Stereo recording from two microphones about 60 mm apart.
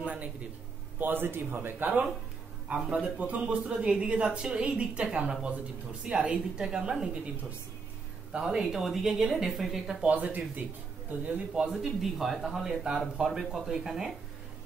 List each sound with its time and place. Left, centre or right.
0.0 s speech: right
0.9 s speech: right; by 7.1 s centre
8.3 s speech: centre
10.0 s speech: right; by 14.1 s centre